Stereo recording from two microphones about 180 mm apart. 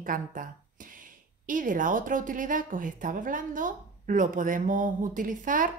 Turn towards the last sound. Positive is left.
turn(degrees=-45)  # may be behind; listen again after turning